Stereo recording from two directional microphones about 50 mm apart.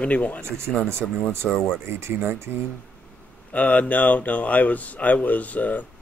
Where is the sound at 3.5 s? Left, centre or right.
Left.